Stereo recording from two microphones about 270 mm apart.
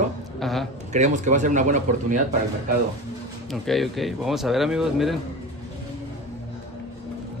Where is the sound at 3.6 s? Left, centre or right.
Centre.